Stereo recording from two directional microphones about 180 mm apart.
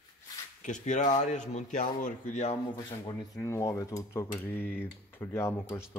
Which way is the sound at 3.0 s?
20° left (ahead or behind).